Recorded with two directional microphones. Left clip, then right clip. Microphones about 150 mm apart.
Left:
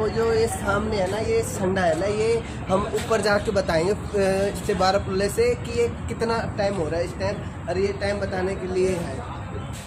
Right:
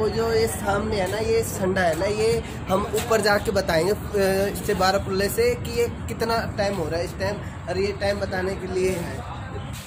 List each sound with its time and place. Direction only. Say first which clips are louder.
0.0 s speech: even; 30° right (ahead or behind)